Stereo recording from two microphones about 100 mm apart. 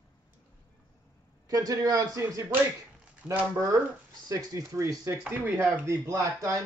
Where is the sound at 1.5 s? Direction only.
35° right (ahead or behind).